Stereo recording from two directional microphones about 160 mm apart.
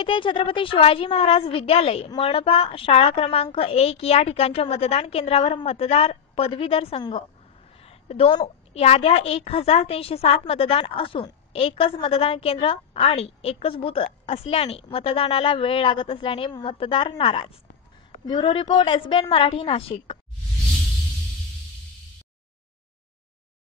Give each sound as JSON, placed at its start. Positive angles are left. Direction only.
{"t": 0.0, "sound": "a woman's voice", "side_deg": 30}
{"t": 7.8, "sound": "a sound", "side_deg": 40}
{"t": 8.7, "sound": "a woman's voice", "side_deg": 40}